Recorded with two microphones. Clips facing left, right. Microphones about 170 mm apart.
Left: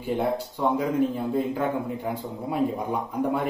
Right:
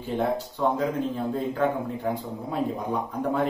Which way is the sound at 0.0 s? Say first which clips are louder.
Left 1 dB; 10° left (ahead or behind).